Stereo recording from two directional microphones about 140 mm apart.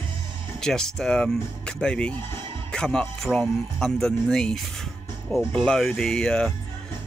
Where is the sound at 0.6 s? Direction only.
5° left (ahead or behind).